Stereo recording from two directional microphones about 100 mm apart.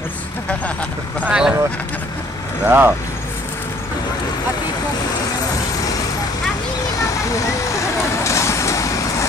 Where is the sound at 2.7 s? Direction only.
20° right (ahead or behind).